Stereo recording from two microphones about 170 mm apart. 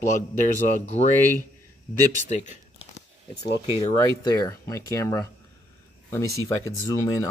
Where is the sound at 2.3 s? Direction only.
45° left (ahead or behind).